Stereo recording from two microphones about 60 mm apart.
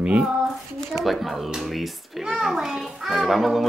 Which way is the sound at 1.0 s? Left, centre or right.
Centre.